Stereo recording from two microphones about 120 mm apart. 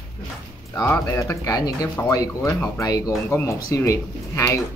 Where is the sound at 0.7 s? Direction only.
25° left (ahead or behind).